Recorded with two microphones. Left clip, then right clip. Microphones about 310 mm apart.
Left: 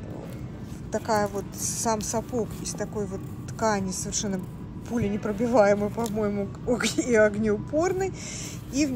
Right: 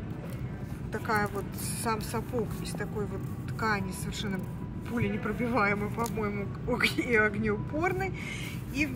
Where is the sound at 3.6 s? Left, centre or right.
Centre.